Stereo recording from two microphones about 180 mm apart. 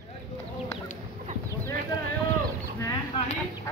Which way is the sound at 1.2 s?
40° right (ahead or behind).